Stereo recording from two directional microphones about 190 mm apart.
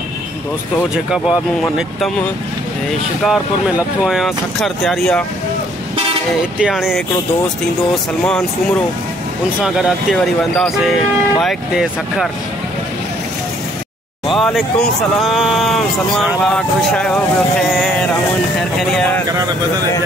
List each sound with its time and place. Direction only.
1.1 s speech: 5° right (ahead or behind)
6.6 s speech: centre (ahead or behind)
9.6 s speech: 5° right (ahead or behind)
14.3 s speech: centre (ahead or behind)
19.2 s speech: 20° right (ahead or behind)